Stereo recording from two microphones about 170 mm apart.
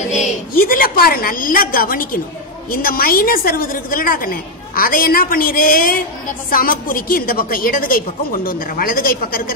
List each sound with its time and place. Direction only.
0.6 s a woman's voice: 55° left (ahead or behind)